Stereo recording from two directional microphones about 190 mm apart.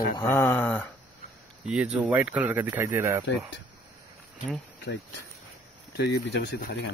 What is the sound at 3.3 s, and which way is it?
Speech, 65° left (ahead or behind).